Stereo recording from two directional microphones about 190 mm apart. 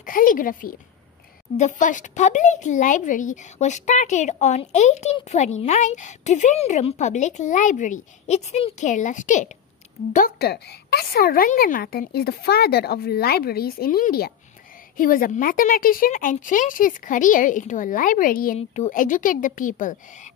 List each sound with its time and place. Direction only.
0.0 s a woman's voice: 45° left (ahead or behind)
10.1 s speech: 55° left (ahead or behind)